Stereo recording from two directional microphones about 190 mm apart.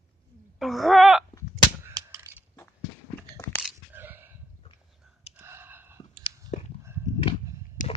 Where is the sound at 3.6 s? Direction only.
10° right (ahead or behind).